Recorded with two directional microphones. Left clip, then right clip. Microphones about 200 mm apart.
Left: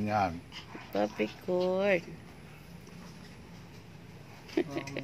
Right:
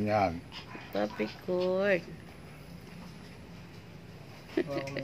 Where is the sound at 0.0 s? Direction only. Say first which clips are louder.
Right 2 dB; 5° left (ahead or behind).